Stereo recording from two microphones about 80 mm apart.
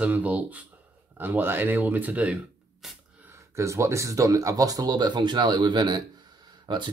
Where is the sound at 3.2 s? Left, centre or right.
Right.